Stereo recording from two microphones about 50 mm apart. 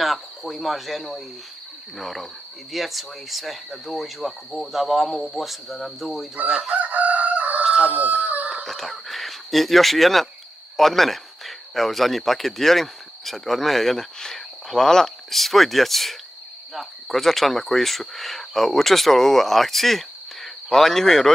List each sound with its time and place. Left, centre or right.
0.0 s cricket: centre
2.0 s speech: centre
6.7 s chicken: right
8.6 s speech: centre